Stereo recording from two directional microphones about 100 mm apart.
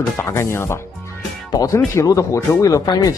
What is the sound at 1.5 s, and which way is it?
Speech, 35° left (ahead or behind).